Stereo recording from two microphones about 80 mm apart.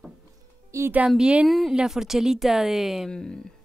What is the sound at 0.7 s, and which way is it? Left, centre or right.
Speech, right.